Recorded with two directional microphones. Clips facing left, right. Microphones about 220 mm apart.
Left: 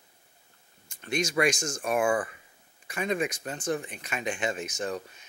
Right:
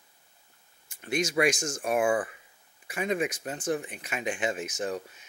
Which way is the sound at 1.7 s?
20° right (ahead or behind).